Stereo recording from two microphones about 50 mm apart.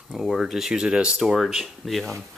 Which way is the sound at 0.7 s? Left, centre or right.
Centre.